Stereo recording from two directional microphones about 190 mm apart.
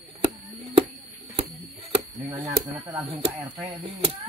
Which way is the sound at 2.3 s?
20° right (ahead or behind).